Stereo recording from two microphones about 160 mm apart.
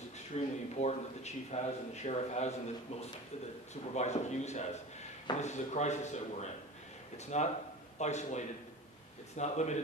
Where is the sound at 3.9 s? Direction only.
45° left (ahead or behind).